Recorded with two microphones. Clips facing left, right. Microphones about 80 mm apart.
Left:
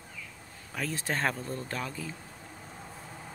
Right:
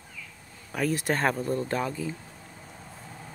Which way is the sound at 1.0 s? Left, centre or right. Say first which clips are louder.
Right 5 dB; centre.